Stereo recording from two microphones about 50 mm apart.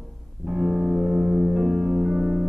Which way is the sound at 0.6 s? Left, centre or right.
Centre.